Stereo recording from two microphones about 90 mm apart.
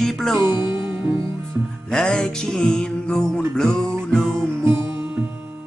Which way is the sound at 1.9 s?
10° left (ahead or behind).